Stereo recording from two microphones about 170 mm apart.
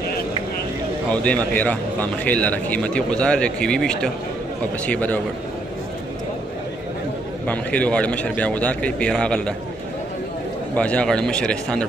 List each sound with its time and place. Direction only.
1.1 s a man's voice: 10° left (ahead or behind)
7.4 s a man's voice: 10° left (ahead or behind)
10.8 s speech: 5° left (ahead or behind)